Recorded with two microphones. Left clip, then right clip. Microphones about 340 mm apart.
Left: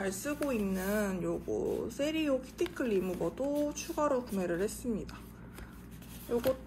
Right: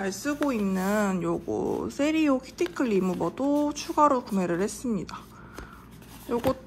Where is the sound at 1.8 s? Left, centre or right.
Right.